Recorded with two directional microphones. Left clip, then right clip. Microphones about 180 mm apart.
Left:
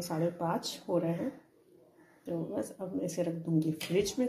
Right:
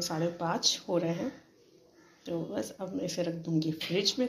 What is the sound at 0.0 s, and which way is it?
Speech, 5° left (ahead or behind).